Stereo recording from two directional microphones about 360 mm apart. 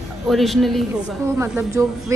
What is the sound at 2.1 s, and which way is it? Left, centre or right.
Speech, centre.